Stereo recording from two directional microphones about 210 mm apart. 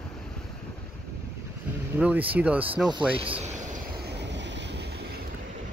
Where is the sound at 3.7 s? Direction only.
50° right (ahead or behind).